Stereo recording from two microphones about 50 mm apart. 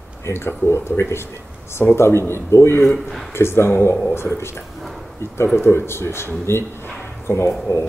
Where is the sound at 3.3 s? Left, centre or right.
Left.